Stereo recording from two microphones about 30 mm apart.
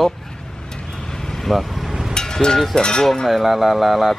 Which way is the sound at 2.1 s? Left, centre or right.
Left.